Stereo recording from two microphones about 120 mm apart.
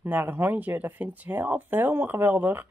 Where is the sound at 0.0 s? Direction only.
15° right (ahead or behind).